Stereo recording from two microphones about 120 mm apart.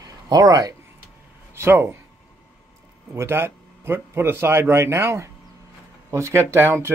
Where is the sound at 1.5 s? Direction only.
20° right (ahead or behind).